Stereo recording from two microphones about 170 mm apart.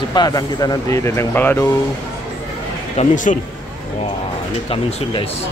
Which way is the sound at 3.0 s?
40° left (ahead or behind).